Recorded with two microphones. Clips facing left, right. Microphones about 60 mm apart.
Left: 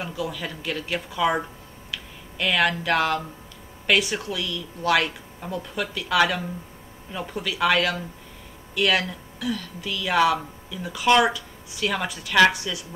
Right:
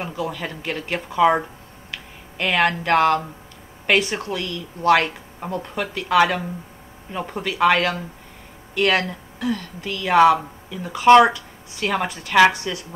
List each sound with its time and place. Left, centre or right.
0.0 s a woman's voice: right
12.1 s speech: right